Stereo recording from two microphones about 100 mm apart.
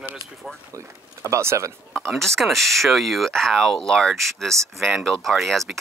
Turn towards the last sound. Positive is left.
turn(degrees=0)  # may be behind; listen again after turning